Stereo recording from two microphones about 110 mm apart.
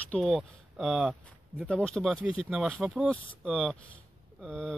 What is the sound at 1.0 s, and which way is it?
Speech, 10° right (ahead or behind).